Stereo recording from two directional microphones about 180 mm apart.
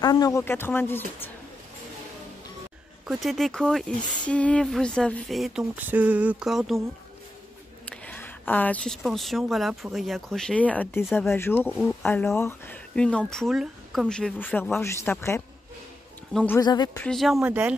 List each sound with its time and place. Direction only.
0.0 s speech: 20° left (ahead or behind)
3.1 s speech: centre (ahead or behind)
7.8 s speech: 5° left (ahead or behind)
16.5 s speech: 25° left (ahead or behind)
17.0 s speech: centre (ahead or behind)